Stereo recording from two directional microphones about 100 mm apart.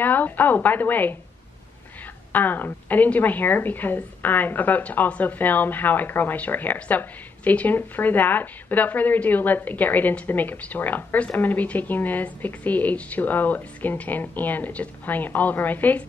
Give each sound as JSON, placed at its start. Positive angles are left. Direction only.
{"t": 0.0, "sound": "a woman's voice", "side_deg": 20}
{"t": 2.3, "sound": "a woman's voice", "side_deg": 20}